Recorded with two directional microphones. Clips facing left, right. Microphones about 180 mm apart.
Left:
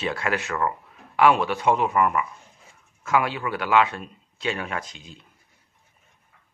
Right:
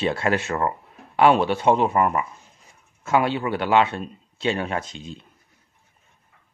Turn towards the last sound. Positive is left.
turn(degrees=-25)  # may be behind; listen again after turning